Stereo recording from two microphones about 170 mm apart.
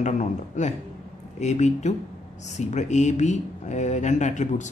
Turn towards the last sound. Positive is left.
turn(degrees=45)  # may be behind; listen again after turning